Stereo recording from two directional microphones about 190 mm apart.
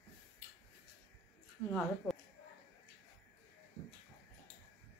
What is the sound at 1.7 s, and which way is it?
Speech, 10° left (ahead or behind).